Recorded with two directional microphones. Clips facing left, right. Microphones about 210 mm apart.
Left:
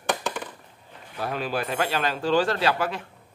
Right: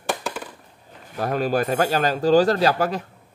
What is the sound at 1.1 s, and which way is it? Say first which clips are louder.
A man's voice: right 6 dB; 45° right (ahead or behind).